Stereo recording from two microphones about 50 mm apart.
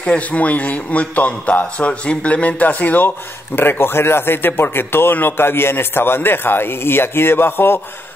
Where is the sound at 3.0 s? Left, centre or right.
Left.